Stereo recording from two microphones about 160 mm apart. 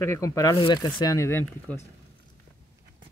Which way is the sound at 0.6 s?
30° left (ahead or behind).